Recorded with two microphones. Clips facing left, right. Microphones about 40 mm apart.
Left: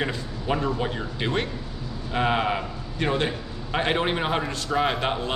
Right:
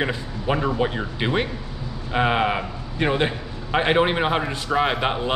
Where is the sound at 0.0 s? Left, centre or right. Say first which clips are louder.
Right 3 dB; centre.